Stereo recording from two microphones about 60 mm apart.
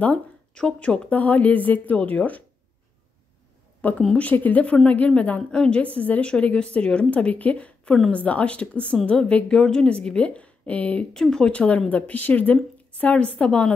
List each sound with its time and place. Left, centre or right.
0.0 s a woman's voice: centre
3.8 s a woman's voice: left
11.1 s a woman's voice: centre
11.5 s a woman's voice: centre